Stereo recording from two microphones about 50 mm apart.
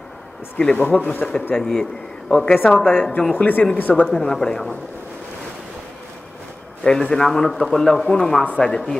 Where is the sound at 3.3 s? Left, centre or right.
Left.